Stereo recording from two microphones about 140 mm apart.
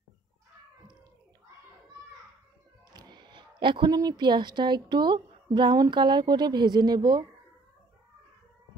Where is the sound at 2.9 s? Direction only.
30° right (ahead or behind).